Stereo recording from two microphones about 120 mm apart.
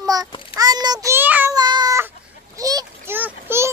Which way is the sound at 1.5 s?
35° right (ahead or behind).